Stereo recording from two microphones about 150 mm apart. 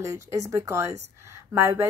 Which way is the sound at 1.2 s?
20° right (ahead or behind).